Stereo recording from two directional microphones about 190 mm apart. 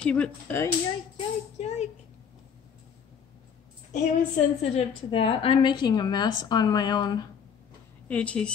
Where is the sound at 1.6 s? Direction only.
35° left (ahead or behind).